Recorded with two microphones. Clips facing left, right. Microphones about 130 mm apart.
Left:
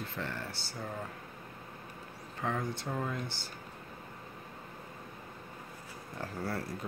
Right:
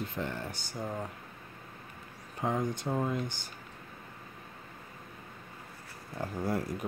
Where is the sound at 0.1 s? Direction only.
15° right (ahead or behind).